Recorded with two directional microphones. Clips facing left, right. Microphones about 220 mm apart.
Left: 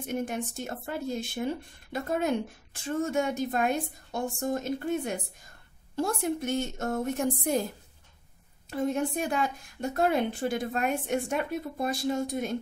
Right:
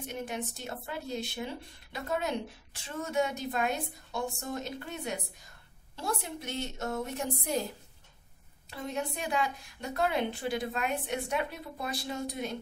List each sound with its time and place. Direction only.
0.0 s speech: 50° left (ahead or behind)
8.6 s speech: 50° left (ahead or behind)